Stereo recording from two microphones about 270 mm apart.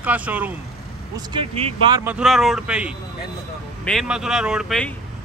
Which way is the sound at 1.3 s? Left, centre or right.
Right.